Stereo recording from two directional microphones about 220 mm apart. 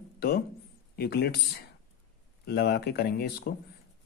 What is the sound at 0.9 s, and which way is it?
A man's voice, 45° left (ahead or behind).